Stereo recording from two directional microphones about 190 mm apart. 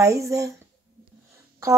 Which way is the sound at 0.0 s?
15° right (ahead or behind).